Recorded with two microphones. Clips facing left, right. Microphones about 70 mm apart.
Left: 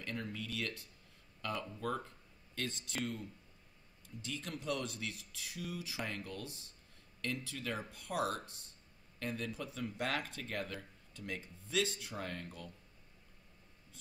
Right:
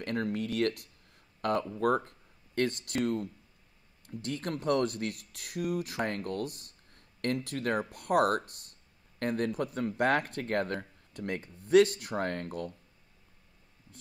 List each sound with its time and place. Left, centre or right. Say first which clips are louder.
0.0 s speech: right 10 dB; right